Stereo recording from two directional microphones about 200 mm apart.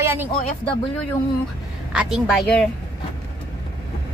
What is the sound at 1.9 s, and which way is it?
Speech, 5° right (ahead or behind).